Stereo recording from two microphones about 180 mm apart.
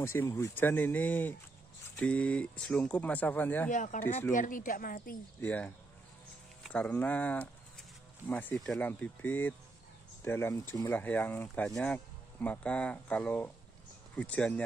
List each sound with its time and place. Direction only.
0.0 s speech: 15° left (ahead or behind)
3.7 s speech: 45° left (ahead or behind)
5.4 s speech: 10° left (ahead or behind)